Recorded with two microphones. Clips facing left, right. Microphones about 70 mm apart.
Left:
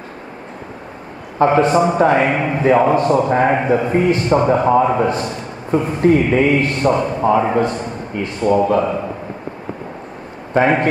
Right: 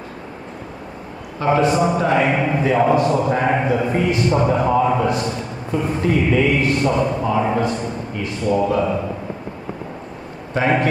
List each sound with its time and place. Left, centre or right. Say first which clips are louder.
1.4 s a man's voice: left 4 dB; left
5.7 s a man's voice: left 6 dB; left
10.5 s a man's voice: left 4 dB; left